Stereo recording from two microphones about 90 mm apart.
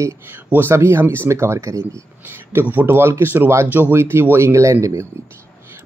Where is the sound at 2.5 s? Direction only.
20° right (ahead or behind).